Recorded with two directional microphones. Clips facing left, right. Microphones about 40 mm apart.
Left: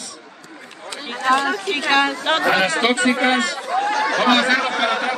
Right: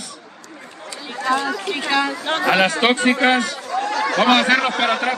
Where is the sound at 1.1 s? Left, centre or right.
Left.